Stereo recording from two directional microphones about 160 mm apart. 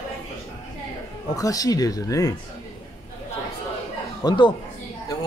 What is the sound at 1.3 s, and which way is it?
Speech, 20° left (ahead or behind).